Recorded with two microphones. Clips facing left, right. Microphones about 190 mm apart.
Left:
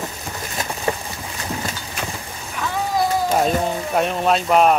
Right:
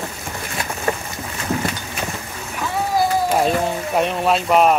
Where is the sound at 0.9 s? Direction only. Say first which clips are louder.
Right 1 dB; 20° left (ahead or behind).